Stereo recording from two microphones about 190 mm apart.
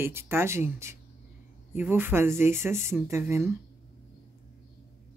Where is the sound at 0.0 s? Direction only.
10° right (ahead or behind).